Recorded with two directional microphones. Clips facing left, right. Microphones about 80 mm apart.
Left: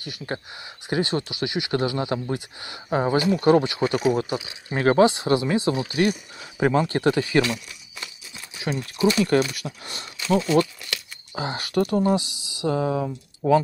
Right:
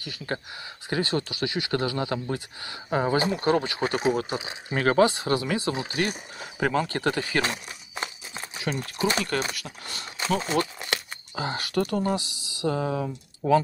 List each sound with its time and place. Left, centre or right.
0.0 s speech: left
3.2 s speech: right
3.4 s speech: left
3.7 s speech: right
4.7 s speech: left
5.7 s speech: right
6.6 s speech: left
7.4 s crumpling: right
8.7 s speech: right
9.6 s speech: centre
10.1 s crumpling: right
11.3 s speech: left